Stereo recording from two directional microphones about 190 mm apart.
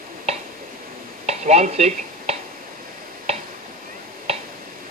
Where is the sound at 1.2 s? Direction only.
35° right (ahead or behind).